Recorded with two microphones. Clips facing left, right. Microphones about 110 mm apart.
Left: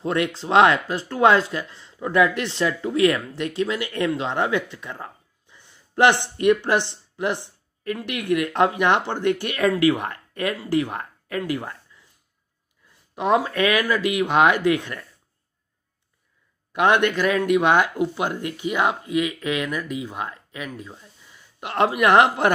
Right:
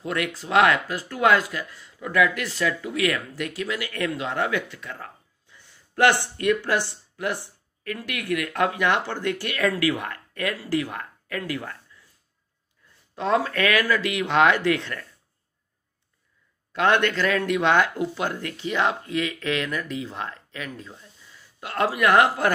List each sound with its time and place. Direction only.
0.0 s speech: 25° left (ahead or behind)
13.1 s speech: 15° left (ahead or behind)
16.7 s speech: 15° left (ahead or behind)